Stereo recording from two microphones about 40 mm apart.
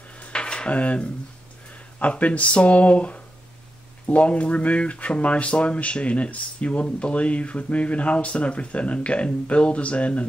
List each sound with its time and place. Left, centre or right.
0.3 s dishes: left
0.7 s speech: left